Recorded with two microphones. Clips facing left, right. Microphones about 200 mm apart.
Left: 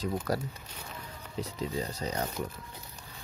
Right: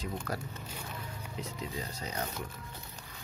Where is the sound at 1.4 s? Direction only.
35° left (ahead or behind).